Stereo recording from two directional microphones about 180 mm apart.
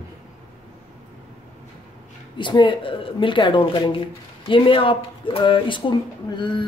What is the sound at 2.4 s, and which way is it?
Speech, 25° left (ahead or behind).